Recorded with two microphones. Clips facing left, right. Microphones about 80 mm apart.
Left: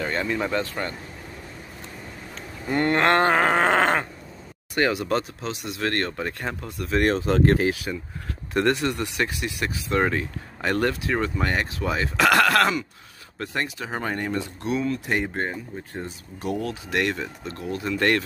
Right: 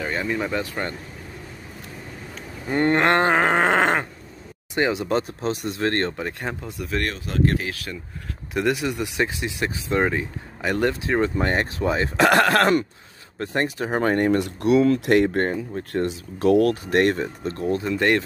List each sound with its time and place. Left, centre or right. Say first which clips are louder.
0.0 s speech: even; centre
2.7 s a sound: right 1 dB; right
5.2 s speech: right 6 dB; right
5.8 s a sound: right 1 dB; right
6.1 s speech: right 1 dB; centre
7.1 s speech: left 5 dB; left
7.7 s speech: left 3 dB; centre
8.5 s speech: left 1 dB; centre
9.1 s a sound: right 2 dB; right
10.0 s speech: right 1 dB; centre
10.9 s speech: right 3 dB; right
16.8 s speech: right 6 dB; right
17.8 s a sound: even; right